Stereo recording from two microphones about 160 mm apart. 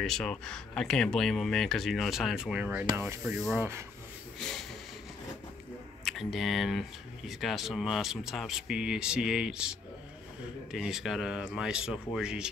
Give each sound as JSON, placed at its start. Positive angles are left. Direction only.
{"t": 0.0, "sound": "speech", "side_deg": 5}
{"t": 4.4, "sound": "a sound", "side_deg": 5}
{"t": 6.0, "sound": "speech", "side_deg": 0}